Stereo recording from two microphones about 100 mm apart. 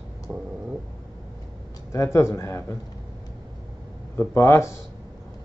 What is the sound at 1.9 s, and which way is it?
Speech, 30° left (ahead or behind).